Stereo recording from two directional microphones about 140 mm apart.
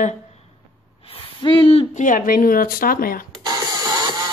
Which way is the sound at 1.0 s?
40° left (ahead or behind).